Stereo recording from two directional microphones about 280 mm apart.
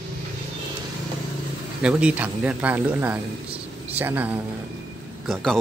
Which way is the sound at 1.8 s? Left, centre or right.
Centre.